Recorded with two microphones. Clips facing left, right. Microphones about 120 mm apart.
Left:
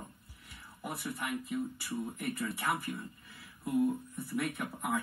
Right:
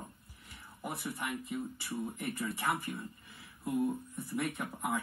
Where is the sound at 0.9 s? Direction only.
15° right (ahead or behind).